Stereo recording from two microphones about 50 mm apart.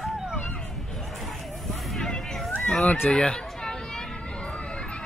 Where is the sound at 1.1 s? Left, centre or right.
Centre.